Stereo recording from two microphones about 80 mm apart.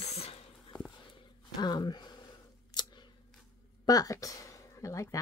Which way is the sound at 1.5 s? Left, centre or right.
Left.